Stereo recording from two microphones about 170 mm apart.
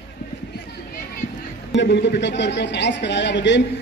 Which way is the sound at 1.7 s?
90° left.